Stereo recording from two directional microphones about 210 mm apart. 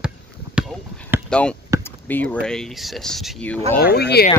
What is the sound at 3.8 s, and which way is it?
Speech, 50° left (ahead or behind).